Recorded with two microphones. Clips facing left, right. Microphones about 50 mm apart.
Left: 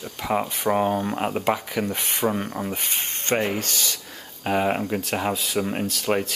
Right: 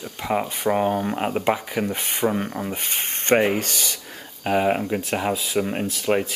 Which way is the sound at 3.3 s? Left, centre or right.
Centre.